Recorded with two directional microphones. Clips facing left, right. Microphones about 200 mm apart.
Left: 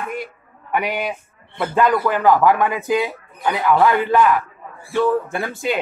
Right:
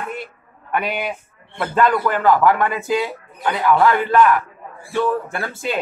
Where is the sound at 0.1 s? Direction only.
15° left (ahead or behind).